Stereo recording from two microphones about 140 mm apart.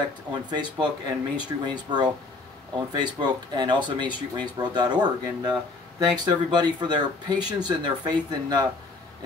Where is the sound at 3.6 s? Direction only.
35° right (ahead or behind).